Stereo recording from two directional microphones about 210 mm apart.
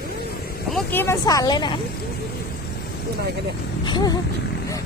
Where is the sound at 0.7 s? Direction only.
10° left (ahead or behind).